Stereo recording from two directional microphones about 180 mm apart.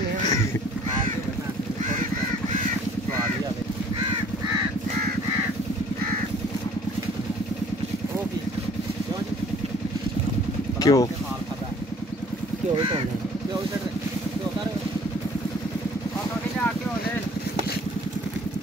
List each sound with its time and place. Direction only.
10.8 s vehicle: 20° left (ahead or behind)